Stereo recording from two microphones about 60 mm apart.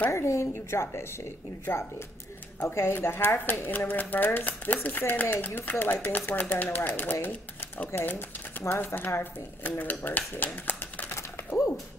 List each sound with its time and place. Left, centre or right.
0.1 s a woman's voice: left
2.7 s speech: left